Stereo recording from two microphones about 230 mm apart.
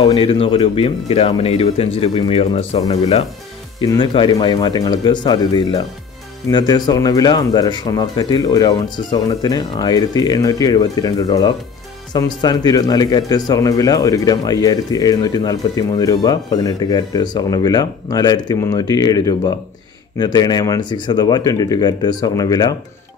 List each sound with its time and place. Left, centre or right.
0.0 s speech: left